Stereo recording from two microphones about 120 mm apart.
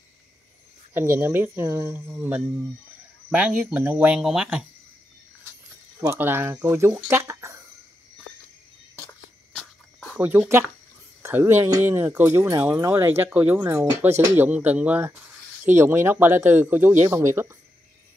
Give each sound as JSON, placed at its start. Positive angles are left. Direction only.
{"t": 0.9, "sound": "speech", "side_deg": -20}
{"t": 5.9, "sound": "speech", "side_deg": -20}
{"t": 7.1, "sound": "a sound", "side_deg": -20}
{"t": 9.5, "sound": "cricket", "side_deg": 5}
{"t": 10.1, "sound": "speech", "side_deg": -15}